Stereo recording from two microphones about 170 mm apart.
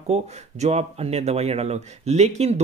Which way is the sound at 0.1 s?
40° right (ahead or behind).